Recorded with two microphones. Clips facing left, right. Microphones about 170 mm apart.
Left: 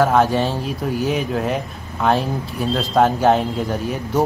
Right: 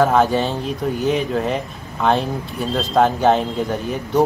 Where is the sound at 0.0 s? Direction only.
Centre (ahead or behind).